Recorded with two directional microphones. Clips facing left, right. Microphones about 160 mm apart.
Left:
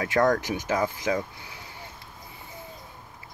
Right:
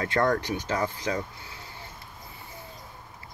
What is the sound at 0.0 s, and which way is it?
Speech, 10° left (ahead or behind).